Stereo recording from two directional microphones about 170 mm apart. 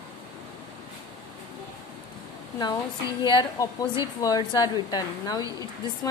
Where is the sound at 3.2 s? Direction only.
25° left (ahead or behind).